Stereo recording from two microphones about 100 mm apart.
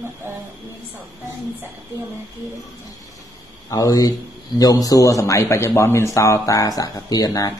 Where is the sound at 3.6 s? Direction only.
35° left (ahead or behind).